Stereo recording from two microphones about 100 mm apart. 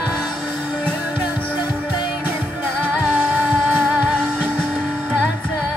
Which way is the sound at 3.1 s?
15° right (ahead or behind).